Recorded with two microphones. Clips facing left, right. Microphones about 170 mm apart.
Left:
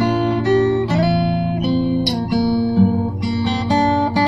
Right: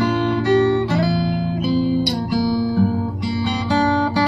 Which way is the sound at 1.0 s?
15° left (ahead or behind).